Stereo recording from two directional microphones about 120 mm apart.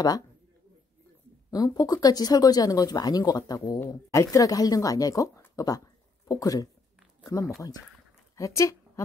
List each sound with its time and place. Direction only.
1.5 s speech: 30° left (ahead or behind)